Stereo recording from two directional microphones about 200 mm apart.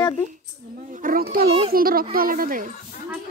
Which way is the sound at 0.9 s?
45° right (ahead or behind).